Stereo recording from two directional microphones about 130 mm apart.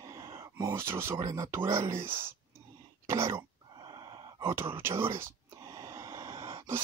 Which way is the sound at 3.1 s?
20° right (ahead or behind).